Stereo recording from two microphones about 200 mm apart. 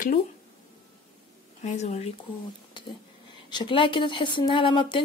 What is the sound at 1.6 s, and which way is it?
Speech, 35° left (ahead or behind).